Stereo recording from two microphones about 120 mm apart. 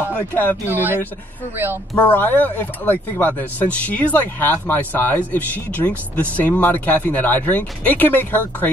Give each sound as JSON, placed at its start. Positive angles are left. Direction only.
{"t": 0.1, "sound": "speech", "side_deg": 15}
{"t": 0.7, "sound": "speech", "side_deg": -15}
{"t": 2.0, "sound": "speech", "side_deg": 15}